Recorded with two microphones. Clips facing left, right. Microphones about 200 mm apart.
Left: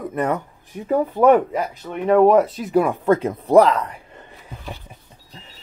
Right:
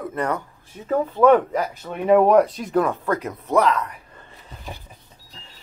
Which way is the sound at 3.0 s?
25° left (ahead or behind).